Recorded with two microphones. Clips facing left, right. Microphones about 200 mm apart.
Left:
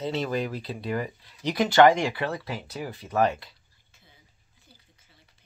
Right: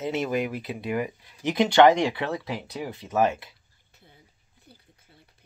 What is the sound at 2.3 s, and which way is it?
Speech, centre (ahead or behind).